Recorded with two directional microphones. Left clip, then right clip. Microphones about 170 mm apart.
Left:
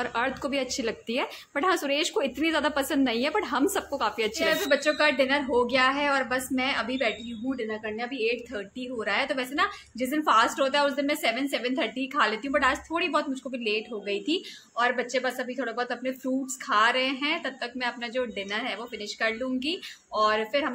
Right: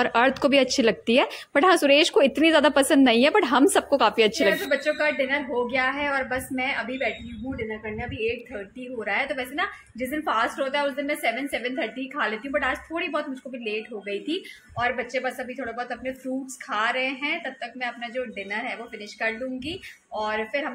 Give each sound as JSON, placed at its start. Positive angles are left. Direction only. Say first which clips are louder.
{"t": 0.0, "sound": "a woman's voice", "louder": "right 8 dB", "side_deg": -35}
{"t": 4.6, "sound": "a woman's voice", "louder": "even", "side_deg": 10}